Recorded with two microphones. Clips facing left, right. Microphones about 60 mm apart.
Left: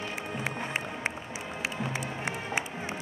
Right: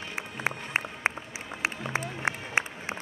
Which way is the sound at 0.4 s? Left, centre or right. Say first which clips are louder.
Right 4 dB; right.